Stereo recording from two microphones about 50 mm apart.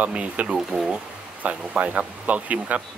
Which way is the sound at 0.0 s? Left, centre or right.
Right.